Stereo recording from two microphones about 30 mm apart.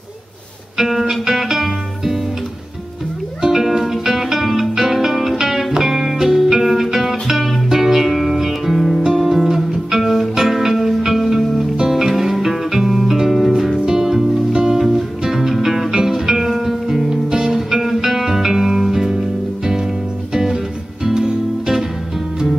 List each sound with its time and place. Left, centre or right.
0.7 s music: centre
3.4 s music: centre
21.0 s music: centre